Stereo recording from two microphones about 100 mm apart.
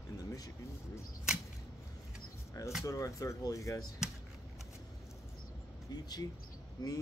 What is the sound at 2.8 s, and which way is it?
Speech, 35° left (ahead or behind).